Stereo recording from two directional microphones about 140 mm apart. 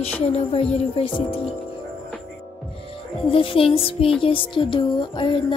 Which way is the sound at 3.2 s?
40° left (ahead or behind).